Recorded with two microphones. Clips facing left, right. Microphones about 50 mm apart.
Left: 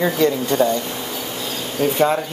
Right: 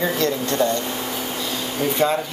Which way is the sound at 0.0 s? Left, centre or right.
Centre.